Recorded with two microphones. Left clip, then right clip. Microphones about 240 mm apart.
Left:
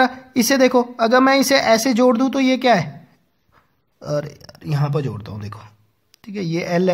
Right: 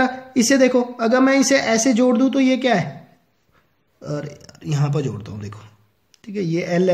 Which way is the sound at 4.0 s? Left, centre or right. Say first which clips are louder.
Left 5 dB; left.